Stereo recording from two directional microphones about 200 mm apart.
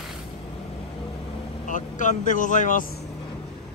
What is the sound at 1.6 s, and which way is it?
Speech, 40° left (ahead or behind).